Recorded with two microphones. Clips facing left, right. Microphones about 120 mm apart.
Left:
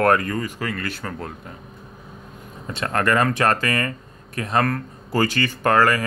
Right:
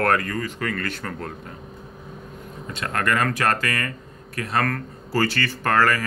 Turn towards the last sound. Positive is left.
turn(degrees=15)  # may be behind; listen again after turning